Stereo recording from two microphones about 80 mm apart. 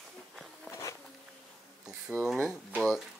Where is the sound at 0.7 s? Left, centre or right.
Left.